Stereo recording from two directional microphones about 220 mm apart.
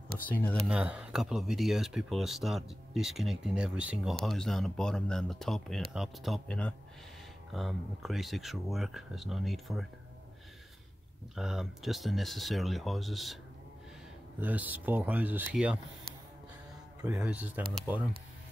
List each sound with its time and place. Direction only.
0.3 s speech: 5° left (ahead or behind)
0.7 s speech: 5° right (ahead or behind)
11.3 s speech: centre (ahead or behind)
14.4 s speech: 5° right (ahead or behind)
17.0 s speech: 5° right (ahead or behind)
17.9 s speech: 15° left (ahead or behind)